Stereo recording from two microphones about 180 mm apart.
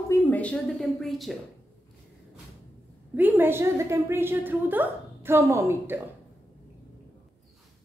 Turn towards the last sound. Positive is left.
turn(degrees=-15)  # may be behind; listen again after turning